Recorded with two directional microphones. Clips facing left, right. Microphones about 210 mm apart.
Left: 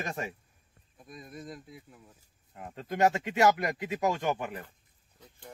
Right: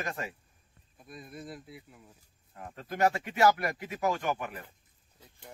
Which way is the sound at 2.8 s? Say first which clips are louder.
Left 2 dB; 20° left (ahead or behind).